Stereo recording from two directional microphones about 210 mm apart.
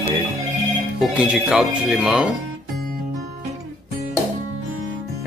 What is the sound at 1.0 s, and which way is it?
Speech, 5° right (ahead or behind).